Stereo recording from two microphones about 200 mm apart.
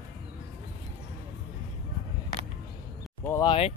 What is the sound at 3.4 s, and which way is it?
Speech, 30° left (ahead or behind).